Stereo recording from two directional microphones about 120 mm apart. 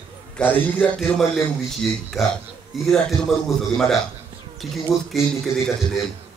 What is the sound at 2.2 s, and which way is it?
Speech, 25° left (ahead or behind).